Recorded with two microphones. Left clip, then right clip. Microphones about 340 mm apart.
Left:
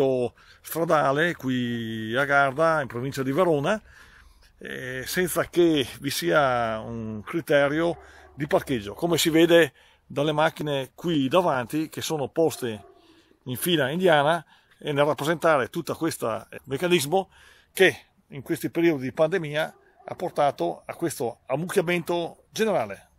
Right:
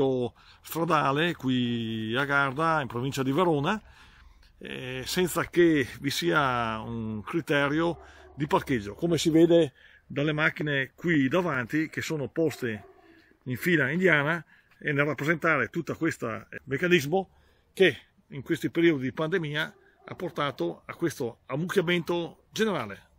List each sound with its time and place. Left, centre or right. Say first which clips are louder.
0.0 s speech: left 4 dB; centre
9.1 s speech: left 3 dB; left
10.1 s speech: left 4 dB; centre
16.3 s speech: left 4 dB; left
16.6 s speech: left 1 dB; centre
18.3 s speech: left 1 dB; centre